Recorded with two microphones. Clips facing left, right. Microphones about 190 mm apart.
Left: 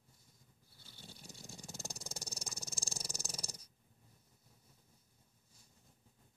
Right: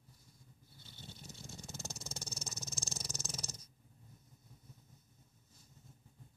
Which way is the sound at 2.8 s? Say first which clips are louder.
Right 2 dB; 35° left (ahead or behind).